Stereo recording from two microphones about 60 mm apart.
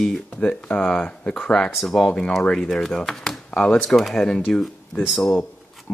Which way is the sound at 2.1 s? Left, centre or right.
Centre.